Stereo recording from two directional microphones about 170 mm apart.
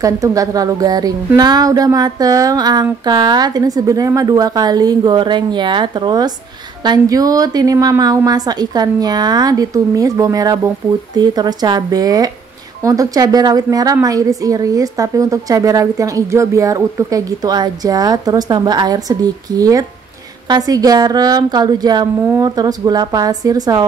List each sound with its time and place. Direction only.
0.0 s a woman's voice: 20° right (ahead or behind)